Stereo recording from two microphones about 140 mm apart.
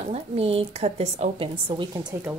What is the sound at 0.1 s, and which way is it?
Speech, 45° right (ahead or behind).